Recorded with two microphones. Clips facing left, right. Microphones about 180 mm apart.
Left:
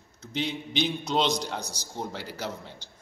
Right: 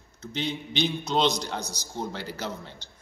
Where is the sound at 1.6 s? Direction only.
30° left (ahead or behind).